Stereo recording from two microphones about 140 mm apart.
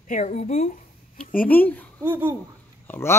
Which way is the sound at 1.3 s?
10° left (ahead or behind).